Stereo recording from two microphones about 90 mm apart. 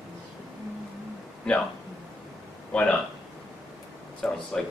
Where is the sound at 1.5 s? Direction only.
5° left (ahead or behind).